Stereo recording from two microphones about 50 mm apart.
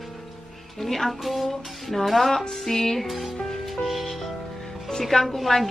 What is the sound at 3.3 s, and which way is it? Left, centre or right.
Music, centre.